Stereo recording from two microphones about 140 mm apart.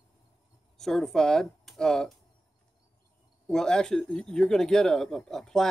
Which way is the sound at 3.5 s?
5° left (ahead or behind).